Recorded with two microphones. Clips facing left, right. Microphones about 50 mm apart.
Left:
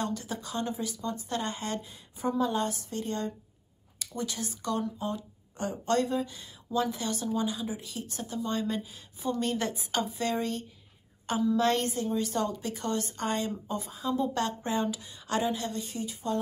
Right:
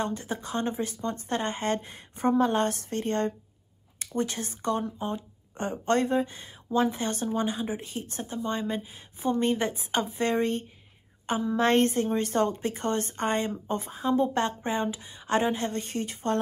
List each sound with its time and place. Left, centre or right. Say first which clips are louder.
0.0 s speech: right 3 dB; right